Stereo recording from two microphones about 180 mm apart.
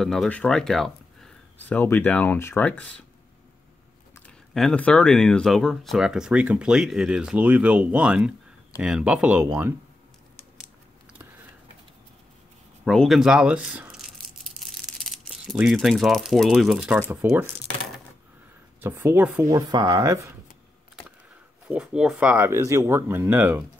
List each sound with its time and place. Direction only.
0.0 s speech: centre (ahead or behind)
4.3 s speech: 5° left (ahead or behind)
12.8 s a sound: 5° left (ahead or behind)
17.1 s speech: 10° right (ahead or behind)
18.8 s speech: 10° right (ahead or behind)
19.5 s speech: 20° right (ahead or behind)
21.6 s speech: 5° right (ahead or behind)